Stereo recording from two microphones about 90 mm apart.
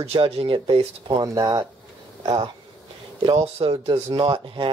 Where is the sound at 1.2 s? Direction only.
45° right (ahead or behind).